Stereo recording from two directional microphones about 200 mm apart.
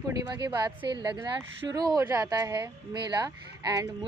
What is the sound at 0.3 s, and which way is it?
A woman's voice, 20° right (ahead or behind).